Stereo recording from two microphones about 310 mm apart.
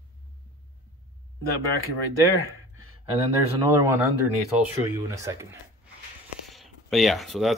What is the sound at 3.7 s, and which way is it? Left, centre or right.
Speech, centre.